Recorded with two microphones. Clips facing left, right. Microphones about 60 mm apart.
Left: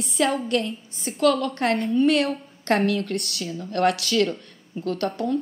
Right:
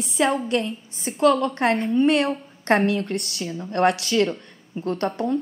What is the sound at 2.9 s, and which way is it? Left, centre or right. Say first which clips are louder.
A woman's voice: right 1 dB; right.